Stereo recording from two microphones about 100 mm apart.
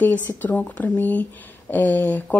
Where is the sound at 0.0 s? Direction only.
15° left (ahead or behind).